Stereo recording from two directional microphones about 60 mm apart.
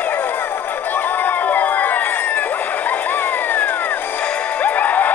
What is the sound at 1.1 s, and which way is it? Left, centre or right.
Crowd, left.